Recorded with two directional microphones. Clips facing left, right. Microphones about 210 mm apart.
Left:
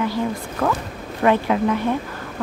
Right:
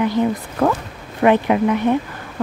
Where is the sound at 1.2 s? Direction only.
15° right (ahead or behind).